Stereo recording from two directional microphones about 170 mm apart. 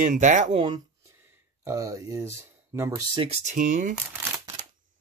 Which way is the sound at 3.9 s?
15° right (ahead or behind).